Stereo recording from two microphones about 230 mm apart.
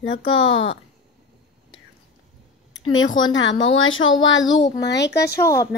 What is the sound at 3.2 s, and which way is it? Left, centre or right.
A woman's voice, left.